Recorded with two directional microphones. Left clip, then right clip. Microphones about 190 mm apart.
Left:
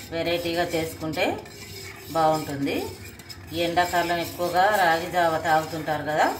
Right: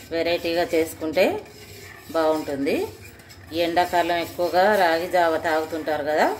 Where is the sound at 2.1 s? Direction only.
60° right (ahead or behind).